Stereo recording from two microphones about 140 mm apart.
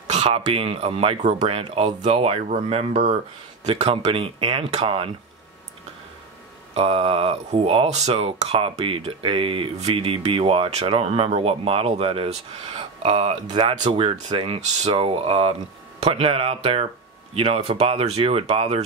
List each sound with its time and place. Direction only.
0.1 s speech: 50° right (ahead or behind)
6.7 s speech: 45° right (ahead or behind)